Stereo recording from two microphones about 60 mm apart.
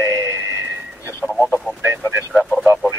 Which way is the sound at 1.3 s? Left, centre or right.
Centre.